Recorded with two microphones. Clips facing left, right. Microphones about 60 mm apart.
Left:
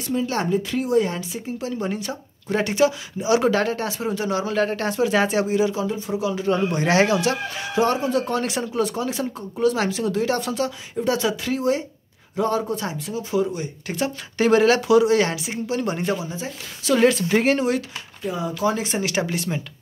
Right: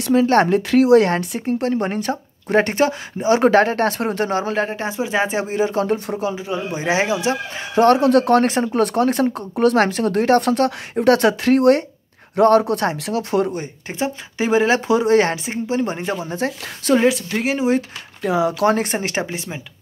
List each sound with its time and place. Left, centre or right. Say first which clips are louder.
0.0 s speech: right 9 dB; right
4.6 s speech: left 2 dB; centre; by 5.8 s right
5.8 s speech: right 5 dB; right
6.3 s speech: left 3 dB; centre; by 7.8 s right
7.8 s speech: right 8 dB; right
8.5 s speech: right 5 dB; right
8.8 s speech: right 8 dB; right
13.8 s speech: right 1 dB; right
14.8 s speech: right 1 dB; right
16.3 s speech: right 8 dB; right
17.3 s speech: left 3 dB; centre
18.2 s speech: right 8 dB; right
18.6 s speech: right 5 dB; right
19.2 s speech: left 3 dB; right